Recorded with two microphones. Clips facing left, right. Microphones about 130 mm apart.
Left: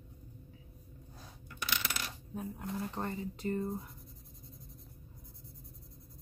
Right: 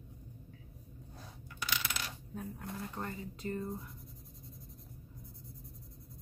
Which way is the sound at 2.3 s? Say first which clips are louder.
Left 5 dB; 15° left (ahead or behind).